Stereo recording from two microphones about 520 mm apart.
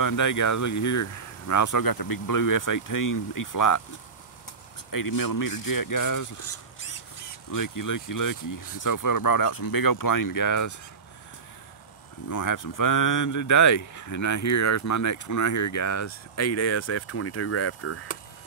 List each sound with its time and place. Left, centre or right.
0.0 s speech: left
4.9 s speech: left
12.3 s speech: left